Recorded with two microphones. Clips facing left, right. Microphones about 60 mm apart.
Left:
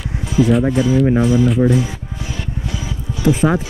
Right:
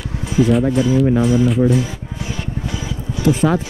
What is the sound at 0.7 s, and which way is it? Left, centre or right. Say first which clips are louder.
Speech: even; left.